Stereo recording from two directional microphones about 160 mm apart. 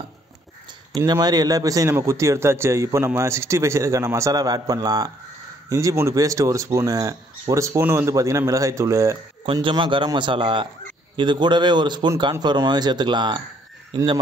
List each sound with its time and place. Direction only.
1.0 s a man's voice: 25° right (ahead or behind)
9.5 s a man's voice: 30° right (ahead or behind)